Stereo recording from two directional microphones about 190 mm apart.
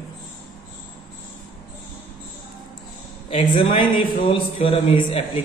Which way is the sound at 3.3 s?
30° left (ahead or behind).